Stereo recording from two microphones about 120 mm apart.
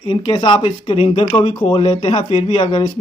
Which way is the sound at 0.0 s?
45° left (ahead or behind).